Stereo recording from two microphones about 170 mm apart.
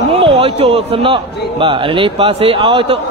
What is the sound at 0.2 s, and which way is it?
A man's voice, 35° right (ahead or behind).